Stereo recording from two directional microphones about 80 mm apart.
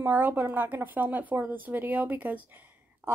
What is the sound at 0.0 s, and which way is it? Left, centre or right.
A woman's voice, right.